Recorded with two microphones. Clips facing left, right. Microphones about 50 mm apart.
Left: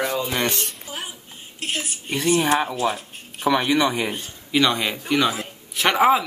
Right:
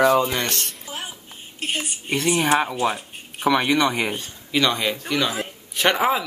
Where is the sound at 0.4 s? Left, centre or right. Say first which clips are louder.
Left 2 dB; centre.